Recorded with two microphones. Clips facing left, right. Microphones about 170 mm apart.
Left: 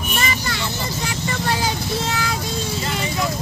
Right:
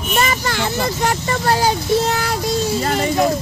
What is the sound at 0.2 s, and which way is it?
Vehicle, 50° right (ahead or behind).